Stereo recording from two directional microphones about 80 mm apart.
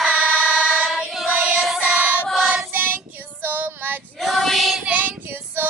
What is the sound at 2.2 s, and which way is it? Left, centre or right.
Child singing, centre.